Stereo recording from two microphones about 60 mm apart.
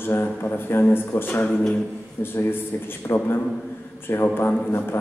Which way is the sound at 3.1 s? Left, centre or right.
Left.